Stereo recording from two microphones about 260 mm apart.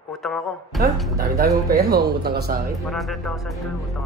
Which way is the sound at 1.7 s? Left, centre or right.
Right.